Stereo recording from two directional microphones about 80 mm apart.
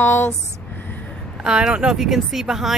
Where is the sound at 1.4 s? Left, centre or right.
Centre.